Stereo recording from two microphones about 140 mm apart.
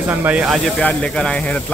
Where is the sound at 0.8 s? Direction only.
10° left (ahead or behind).